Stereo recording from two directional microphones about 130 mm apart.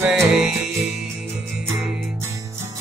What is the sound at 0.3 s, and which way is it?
Music, 5° right (ahead or behind).